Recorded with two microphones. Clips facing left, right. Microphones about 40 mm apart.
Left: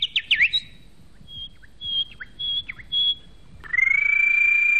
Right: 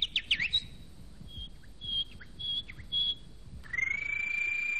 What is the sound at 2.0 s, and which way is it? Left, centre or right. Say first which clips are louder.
Bird: left 9 dB; left.